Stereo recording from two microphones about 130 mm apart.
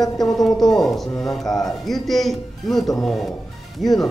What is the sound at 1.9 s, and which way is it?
A man's voice, centre (ahead or behind).